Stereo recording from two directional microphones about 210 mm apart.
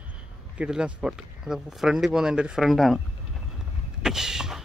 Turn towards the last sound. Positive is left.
turn(degrees=0)  # may be behind; listen again after turning